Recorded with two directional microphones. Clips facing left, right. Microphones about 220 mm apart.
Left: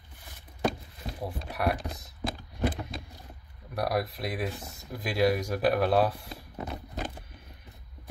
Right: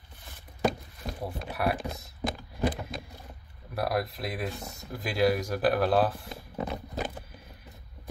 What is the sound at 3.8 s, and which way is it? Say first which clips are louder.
Speech: even; centre (ahead or behind).